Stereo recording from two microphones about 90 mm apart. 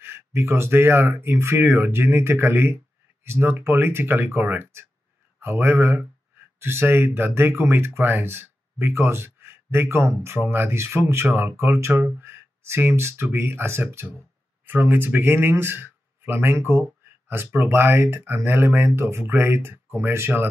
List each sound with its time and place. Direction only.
0.0 s speech: 25° right (ahead or behind)